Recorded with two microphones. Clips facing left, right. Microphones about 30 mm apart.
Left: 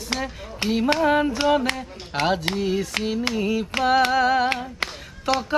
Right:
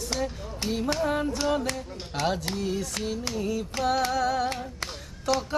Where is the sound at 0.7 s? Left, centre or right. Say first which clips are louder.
Left 7 dB; left.